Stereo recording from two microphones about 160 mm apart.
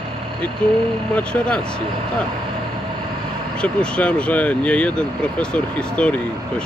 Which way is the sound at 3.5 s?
5° left (ahead or behind).